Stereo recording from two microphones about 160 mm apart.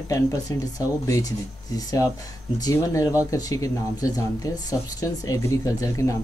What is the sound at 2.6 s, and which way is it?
Speech, 20° left (ahead or behind).